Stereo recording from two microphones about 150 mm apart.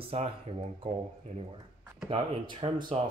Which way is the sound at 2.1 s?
35° right (ahead or behind).